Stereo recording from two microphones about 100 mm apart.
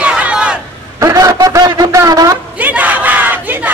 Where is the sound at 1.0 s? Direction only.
35° right (ahead or behind).